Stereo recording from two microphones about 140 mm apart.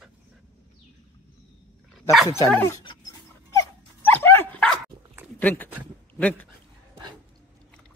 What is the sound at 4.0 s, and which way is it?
Dog, 15° left (ahead or behind).